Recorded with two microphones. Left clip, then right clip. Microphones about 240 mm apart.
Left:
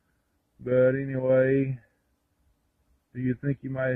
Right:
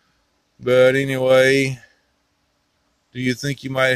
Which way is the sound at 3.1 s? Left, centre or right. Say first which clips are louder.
Right 7 dB; centre.